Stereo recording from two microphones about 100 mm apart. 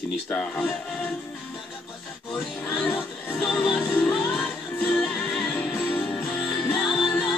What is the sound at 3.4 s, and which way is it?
Music, centre (ahead or behind).